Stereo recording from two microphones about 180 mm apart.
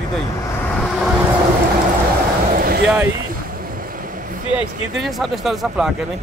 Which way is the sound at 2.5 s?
55° right (ahead or behind).